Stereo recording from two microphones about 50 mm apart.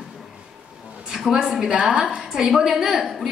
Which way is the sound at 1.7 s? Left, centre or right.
Right.